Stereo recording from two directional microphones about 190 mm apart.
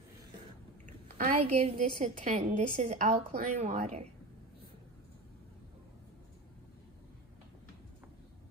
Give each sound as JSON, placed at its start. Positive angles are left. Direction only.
{"t": 0.8, "sound": "a woman's voice", "side_deg": -40}